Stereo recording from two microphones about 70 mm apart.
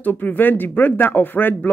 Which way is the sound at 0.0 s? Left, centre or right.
Left.